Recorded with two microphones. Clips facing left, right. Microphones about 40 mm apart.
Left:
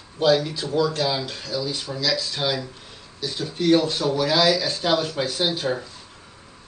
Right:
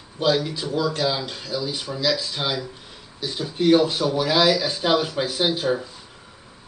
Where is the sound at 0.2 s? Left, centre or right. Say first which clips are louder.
Left 2 dB; centre.